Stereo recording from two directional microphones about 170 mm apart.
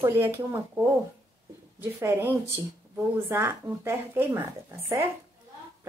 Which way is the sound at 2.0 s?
15° right (ahead or behind).